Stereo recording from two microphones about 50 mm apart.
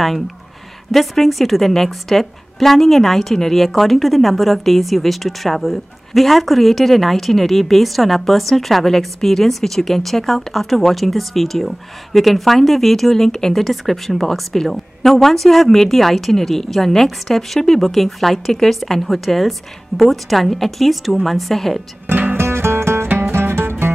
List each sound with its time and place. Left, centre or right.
0.9 s a woman's voice: centre
22.0 s music: right
22.4 s music: right